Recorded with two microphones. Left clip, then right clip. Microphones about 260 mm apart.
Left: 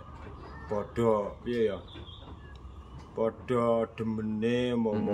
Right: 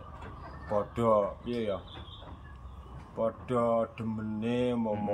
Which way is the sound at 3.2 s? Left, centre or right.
Centre.